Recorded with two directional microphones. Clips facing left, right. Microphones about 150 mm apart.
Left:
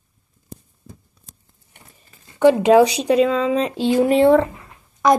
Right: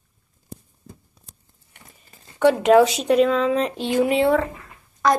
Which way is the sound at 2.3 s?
15° left (ahead or behind).